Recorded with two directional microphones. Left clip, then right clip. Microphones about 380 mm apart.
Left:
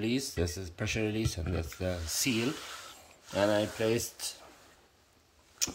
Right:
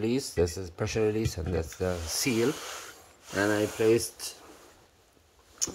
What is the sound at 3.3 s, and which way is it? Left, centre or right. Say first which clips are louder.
Speech: right 1 dB; centre.